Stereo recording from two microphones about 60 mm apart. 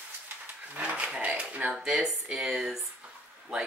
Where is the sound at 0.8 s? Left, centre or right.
Right.